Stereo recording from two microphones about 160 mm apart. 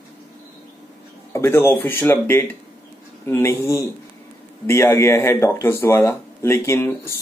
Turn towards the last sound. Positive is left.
turn(degrees=15)  # may be behind; listen again after turning